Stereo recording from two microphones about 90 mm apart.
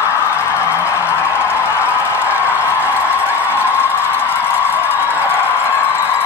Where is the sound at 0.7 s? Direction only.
25° left (ahead or behind).